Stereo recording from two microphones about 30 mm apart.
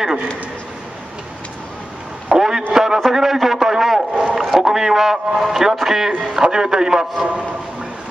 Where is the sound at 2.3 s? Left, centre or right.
Centre.